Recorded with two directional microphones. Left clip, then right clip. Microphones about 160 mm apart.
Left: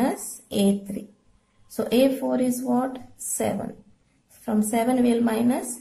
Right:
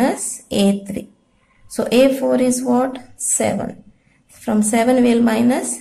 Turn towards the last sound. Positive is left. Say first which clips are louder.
# right 7 dB
turn(degrees=-15)  # may be behind; listen again after turning